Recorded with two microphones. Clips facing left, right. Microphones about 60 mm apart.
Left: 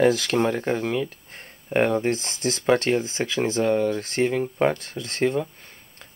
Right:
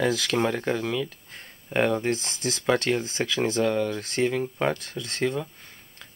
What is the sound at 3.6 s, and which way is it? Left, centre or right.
Speech, centre.